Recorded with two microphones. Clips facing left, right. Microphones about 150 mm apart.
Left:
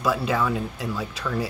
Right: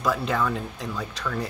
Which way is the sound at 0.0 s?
5° left (ahead or behind).